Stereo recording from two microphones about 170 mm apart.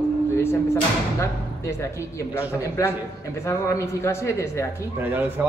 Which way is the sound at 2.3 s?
15° left (ahead or behind).